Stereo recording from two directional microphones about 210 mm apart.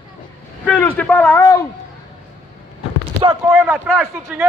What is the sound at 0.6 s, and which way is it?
Speech, 5° left (ahead or behind).